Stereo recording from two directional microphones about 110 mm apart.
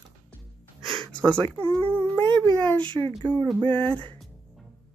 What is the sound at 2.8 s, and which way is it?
Speech, 45° right (ahead or behind).